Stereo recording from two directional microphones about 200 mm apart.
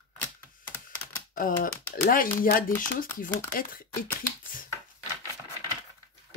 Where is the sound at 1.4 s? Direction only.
45° left (ahead or behind).